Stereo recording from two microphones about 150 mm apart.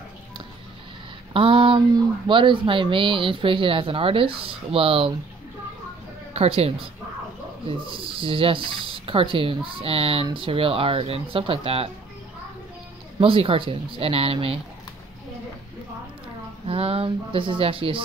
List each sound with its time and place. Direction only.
1.3 s speech: 35° right (ahead or behind)
6.3 s speech: 40° right (ahead or behind)
13.2 s speech: 40° right (ahead or behind)
16.6 s speech: 40° right (ahead or behind)